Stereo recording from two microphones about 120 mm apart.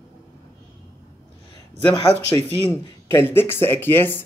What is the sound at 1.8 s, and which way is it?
Speech, 50° left (ahead or behind).